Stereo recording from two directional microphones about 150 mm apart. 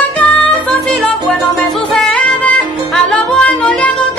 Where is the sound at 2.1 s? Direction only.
5° left (ahead or behind).